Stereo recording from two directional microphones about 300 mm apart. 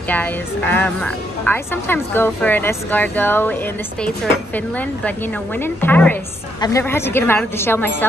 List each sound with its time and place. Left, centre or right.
0.1 s a woman's voice: centre
5.6 s a woman's voice: centre